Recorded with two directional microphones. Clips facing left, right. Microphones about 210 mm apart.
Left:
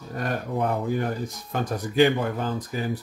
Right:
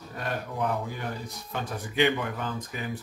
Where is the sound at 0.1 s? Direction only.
45° left (ahead or behind).